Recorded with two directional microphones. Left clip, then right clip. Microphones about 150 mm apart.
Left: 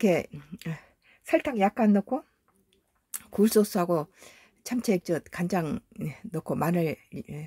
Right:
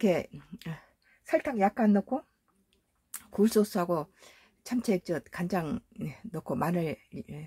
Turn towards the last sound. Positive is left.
turn(degrees=30)  # may be behind; listen again after turning